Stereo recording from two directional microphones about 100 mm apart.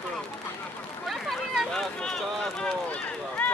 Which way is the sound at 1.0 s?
Centre (ahead or behind).